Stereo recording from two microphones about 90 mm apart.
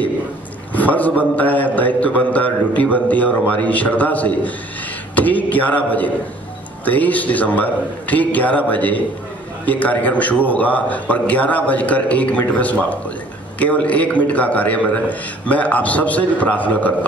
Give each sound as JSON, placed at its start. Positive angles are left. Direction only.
{"t": 0.7, "sound": "a man's voice", "side_deg": 15}